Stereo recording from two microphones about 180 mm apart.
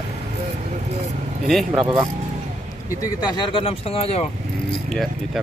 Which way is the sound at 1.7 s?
20° right (ahead or behind).